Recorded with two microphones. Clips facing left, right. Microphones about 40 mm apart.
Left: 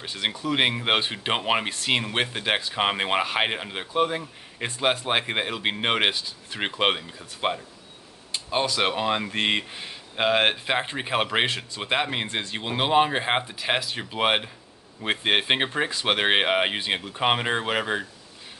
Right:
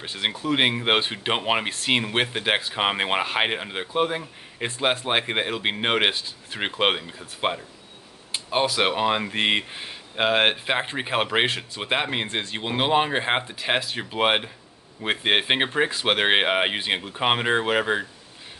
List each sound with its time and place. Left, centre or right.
0.0 s speech: centre